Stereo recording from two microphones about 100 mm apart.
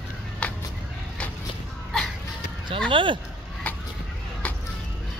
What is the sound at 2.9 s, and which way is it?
Speech, 55° right (ahead or behind).